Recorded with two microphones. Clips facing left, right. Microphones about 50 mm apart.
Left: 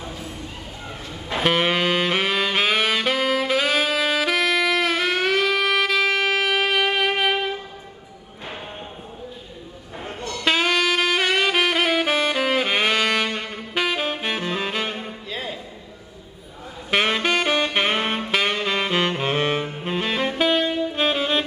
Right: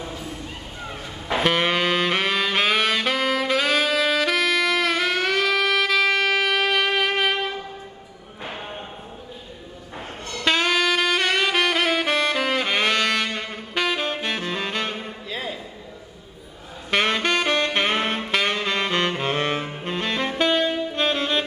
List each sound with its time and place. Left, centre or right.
1.3 s saxophone: centre
10.4 s saxophone: centre
16.9 s saxophone: centre